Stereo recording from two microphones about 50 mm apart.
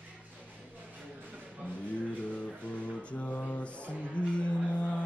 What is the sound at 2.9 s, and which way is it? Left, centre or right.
Music, left.